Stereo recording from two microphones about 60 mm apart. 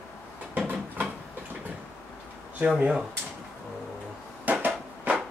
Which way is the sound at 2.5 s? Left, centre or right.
Right.